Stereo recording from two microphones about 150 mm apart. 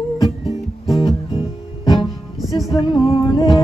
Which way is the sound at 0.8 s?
35° left (ahead or behind).